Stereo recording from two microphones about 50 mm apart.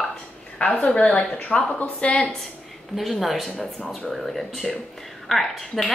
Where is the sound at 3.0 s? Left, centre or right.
Centre.